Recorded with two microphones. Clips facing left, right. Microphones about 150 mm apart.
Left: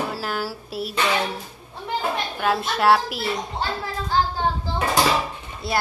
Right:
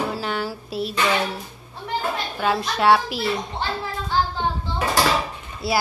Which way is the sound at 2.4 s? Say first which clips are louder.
Right 1 dB; centre (ahead or behind).